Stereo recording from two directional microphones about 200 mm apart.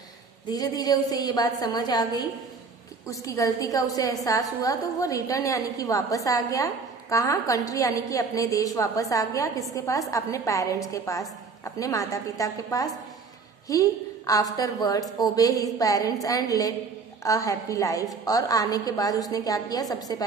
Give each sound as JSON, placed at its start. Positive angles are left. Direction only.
{"t": 0.5, "sound": "a woman's voice", "side_deg": 20}